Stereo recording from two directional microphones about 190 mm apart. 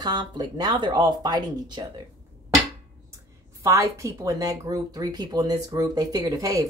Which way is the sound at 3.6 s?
15° right (ahead or behind).